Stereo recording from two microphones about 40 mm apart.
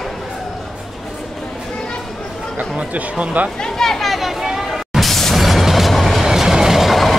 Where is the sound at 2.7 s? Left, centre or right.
Right.